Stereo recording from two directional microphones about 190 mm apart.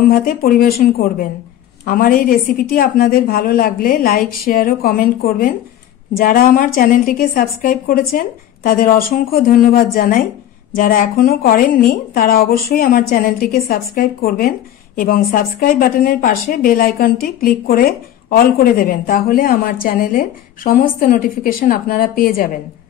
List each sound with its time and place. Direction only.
0.1 s a woman's voice: 50° left (ahead or behind)